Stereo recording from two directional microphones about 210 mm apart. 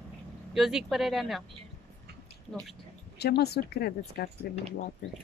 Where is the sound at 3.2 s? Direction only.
50° left (ahead or behind).